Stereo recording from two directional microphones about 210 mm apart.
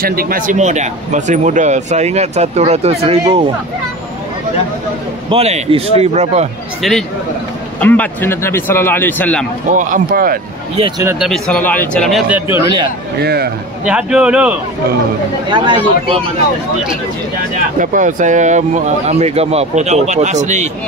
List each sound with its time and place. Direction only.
0.0 s speech: 45° right (ahead or behind)
5.3 s a man's voice: 30° right (ahead or behind)
6.8 s speech: centre (ahead or behind)
9.7 s speech: 40° right (ahead or behind)
10.8 s speech: 15° right (ahead or behind)
11.1 s speech: centre (ahead or behind)
13.2 s a man's voice: 50° right (ahead or behind)
13.8 s speech: 5° right (ahead or behind)
15.5 s a man's voice: 20° right (ahead or behind)
17.7 s speech: 35° right (ahead or behind)